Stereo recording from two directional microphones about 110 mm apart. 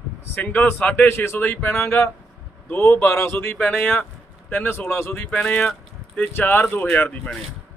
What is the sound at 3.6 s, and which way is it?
A man's voice, 10° left (ahead or behind).